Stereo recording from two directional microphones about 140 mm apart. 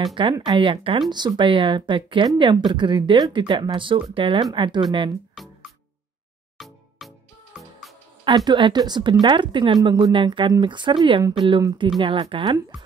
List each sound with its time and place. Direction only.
0.0 s speech: 35° right (ahead or behind)
5.3 s music: centre (ahead or behind)
8.2 s speech: 35° right (ahead or behind)